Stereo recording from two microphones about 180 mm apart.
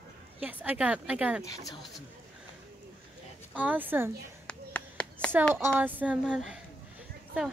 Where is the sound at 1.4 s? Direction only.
20° left (ahead or behind).